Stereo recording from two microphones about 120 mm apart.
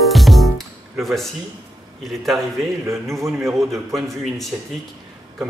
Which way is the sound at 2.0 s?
Centre (ahead or behind).